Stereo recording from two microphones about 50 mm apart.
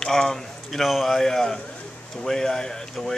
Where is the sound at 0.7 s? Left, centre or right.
Centre.